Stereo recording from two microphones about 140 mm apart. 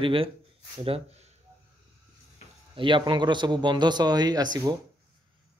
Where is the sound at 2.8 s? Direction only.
35° right (ahead or behind).